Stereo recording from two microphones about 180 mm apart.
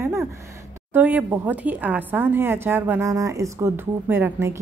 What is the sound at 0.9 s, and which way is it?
A woman's voice, 10° right (ahead or behind).